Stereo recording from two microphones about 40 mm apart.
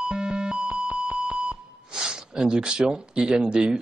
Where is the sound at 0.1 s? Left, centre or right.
Centre.